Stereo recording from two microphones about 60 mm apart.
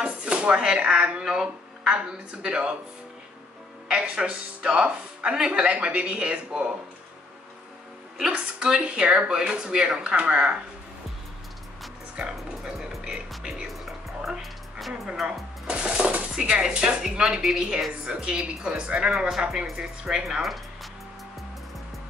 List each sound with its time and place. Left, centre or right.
0.0 s speech: centre
4.0 s speech: centre
8.3 s speech: centre
12.2 s speech: centre
13.8 s music: centre
15.7 s speech: centre